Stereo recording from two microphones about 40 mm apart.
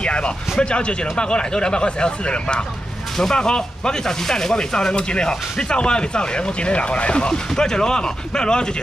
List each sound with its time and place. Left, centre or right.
0.0 s speech: left